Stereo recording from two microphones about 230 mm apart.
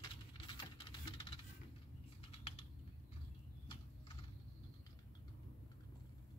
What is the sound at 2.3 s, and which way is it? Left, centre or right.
Typing, left.